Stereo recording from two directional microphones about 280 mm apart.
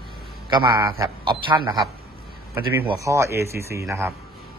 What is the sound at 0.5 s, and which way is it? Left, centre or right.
A man's voice, centre.